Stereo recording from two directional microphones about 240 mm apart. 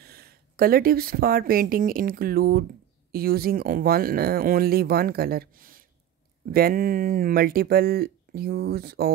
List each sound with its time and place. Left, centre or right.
0.0 s speech: right